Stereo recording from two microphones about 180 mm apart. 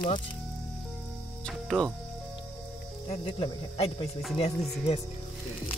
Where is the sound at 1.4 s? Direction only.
5° left (ahead or behind).